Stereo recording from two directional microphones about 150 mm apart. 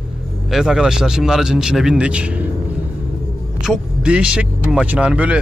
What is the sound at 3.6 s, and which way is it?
Speech, 5° right (ahead or behind).